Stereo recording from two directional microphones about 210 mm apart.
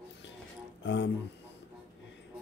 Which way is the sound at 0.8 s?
60° left (ahead or behind).